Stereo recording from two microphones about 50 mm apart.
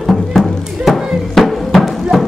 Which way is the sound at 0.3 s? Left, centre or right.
Centre.